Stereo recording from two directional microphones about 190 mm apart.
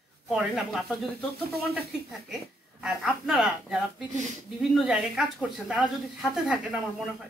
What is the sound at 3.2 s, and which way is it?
Speech, centre (ahead or behind).